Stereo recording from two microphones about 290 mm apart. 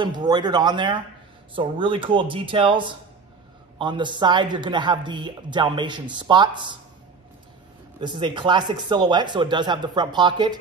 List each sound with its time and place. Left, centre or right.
0.0 s speech: centre
8.0 s speech: centre